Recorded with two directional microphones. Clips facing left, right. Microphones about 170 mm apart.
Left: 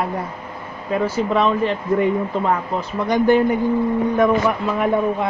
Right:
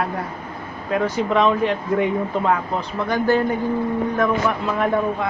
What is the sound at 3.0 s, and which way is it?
Speech, 20° left (ahead or behind).